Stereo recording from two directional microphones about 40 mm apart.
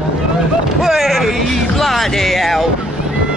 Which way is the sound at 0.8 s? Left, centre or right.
Centre.